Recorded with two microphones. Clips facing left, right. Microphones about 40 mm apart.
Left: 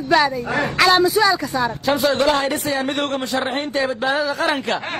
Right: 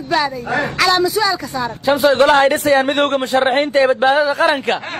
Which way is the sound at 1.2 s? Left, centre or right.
Left.